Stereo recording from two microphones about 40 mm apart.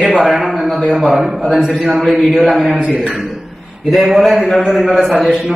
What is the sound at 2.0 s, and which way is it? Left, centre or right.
Speech, centre.